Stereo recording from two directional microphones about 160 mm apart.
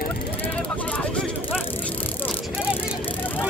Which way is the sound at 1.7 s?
10° left (ahead or behind).